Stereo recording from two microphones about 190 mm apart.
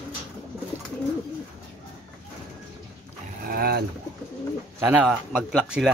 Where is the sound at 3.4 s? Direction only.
50° right (ahead or behind).